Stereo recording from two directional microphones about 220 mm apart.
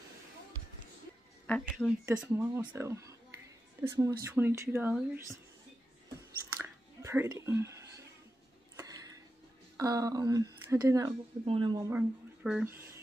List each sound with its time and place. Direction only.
1.5 s speech: 5° left (ahead or behind)
2.0 s speech: 10° right (ahead or behind)
6.6 s chewing: 10° right (ahead or behind)
8.7 s a sound: 15° right (ahead or behind)
9.8 s speech: 15° right (ahead or behind)
11.9 s speech: 5° right (ahead or behind)